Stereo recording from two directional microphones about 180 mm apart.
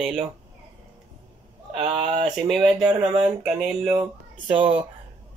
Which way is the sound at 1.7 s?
30° right (ahead or behind).